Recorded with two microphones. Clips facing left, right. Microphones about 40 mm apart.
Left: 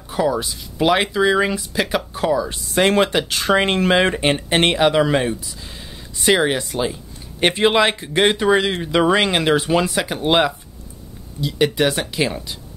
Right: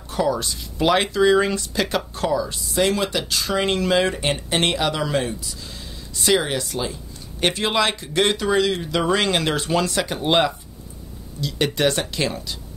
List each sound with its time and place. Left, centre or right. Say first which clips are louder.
0.1 s speech: left 2 dB; centre
2.5 s speech: left 4 dB; left; by 12.5 s centre